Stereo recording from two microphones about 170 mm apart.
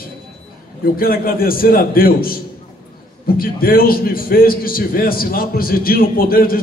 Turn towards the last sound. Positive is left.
turn(degrees=60)  # may be behind; listen again after turning